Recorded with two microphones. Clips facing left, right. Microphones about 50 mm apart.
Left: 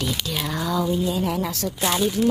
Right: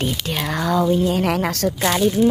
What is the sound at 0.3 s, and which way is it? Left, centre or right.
Speech, right.